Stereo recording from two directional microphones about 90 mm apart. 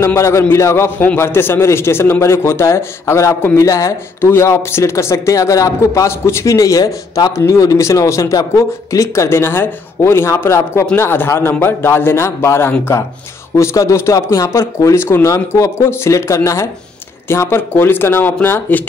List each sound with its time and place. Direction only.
0.0 s a man's voice: 30° left (ahead or behind)